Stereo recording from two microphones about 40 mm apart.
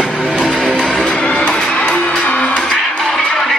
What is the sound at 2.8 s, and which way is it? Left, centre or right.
Music, centre.